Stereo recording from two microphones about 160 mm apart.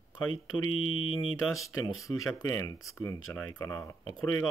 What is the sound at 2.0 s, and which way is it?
Speech, 20° left (ahead or behind).